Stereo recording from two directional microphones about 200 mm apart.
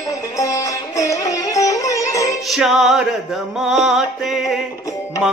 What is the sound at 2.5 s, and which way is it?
Music, centre (ahead or behind).